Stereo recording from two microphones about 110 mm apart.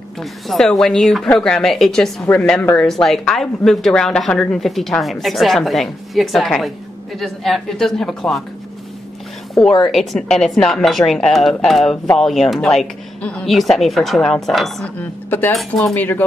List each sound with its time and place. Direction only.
0.2 s speech: centre (ahead or behind)
2.3 s speech: 15° left (ahead or behind)
2.9 s speech: centre (ahead or behind)
9.8 s speech: centre (ahead or behind)
15.0 s speech: 15° left (ahead or behind)
15.5 s speech: 5° left (ahead or behind)
16.0 s speech: 15° left (ahead or behind)